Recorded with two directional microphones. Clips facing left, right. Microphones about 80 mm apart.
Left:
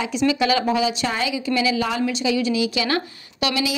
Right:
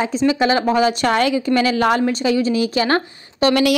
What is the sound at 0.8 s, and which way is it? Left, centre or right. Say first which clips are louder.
A woman's voice: right 6 dB; right.